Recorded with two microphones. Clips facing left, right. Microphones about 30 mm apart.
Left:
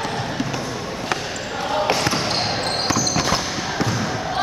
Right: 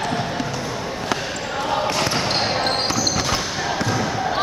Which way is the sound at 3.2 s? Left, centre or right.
Centre.